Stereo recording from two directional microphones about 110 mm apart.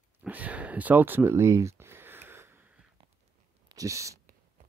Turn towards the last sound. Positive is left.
turn(degrees=-30)  # may be behind; listen again after turning